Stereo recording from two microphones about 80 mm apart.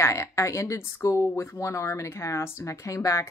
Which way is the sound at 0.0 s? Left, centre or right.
Left.